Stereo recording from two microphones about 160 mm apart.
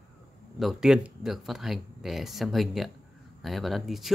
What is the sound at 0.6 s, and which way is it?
Speech, centre (ahead or behind).